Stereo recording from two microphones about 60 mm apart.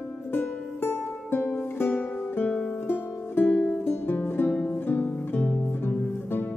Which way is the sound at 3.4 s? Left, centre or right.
Centre.